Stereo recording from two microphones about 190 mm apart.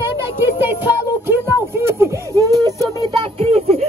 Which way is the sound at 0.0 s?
10° right (ahead or behind).